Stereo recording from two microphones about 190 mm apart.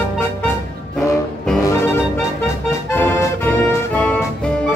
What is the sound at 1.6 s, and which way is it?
Music, 15° left (ahead or behind).